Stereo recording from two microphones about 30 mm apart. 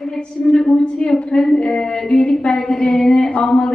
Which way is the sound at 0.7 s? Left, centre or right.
Left.